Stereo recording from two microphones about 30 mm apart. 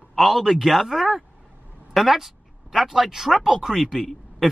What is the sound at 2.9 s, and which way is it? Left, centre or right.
Speech, centre.